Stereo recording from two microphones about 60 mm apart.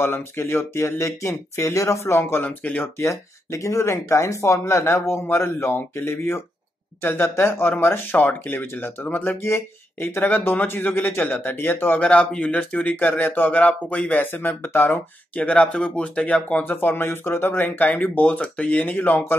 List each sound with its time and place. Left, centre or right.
0.0 s speech: left
2.4 s speech: left
2.8 s speech: left
9.4 s speech: left
15.3 s speech: centre
16.6 s speech: left
18.2 s speech: centre